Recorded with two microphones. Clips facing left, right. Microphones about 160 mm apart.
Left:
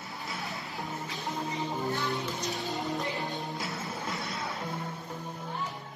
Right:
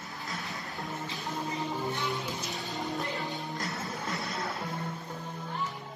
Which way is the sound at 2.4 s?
Centre (ahead or behind).